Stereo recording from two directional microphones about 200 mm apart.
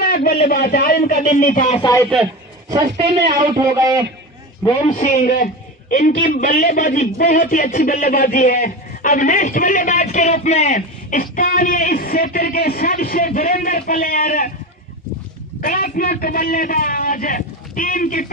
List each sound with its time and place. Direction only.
0.0 s a sound: 50° left (ahead or behind)
0.4 s a man's voice: 50° left (ahead or behind)
1.8 s speech: 15° left (ahead or behind)
2.7 s a man's voice: 20° right (ahead or behind)
4.9 s a man's voice: 40° left (ahead or behind)
15.6 s speech: 45° left (ahead or behind)